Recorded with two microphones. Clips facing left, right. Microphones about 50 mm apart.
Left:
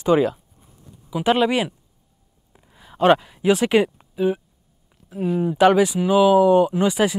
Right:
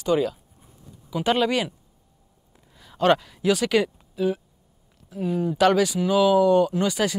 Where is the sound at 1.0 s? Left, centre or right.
Centre.